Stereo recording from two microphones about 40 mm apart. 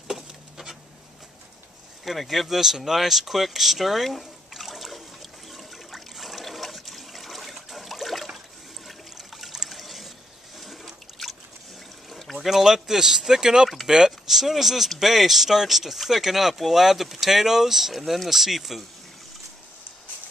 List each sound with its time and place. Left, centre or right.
0.1 s a sound: centre
2.0 s a sound: centre
9.5 s trickle: centre
9.8 s boat: centre
10.6 s liquid: centre
12.1 s pour: centre
12.4 s speech: centre